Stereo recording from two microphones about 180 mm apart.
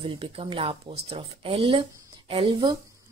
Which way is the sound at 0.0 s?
30° right (ahead or behind).